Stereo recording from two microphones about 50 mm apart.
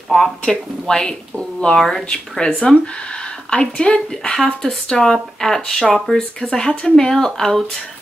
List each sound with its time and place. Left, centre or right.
0.5 s speech: centre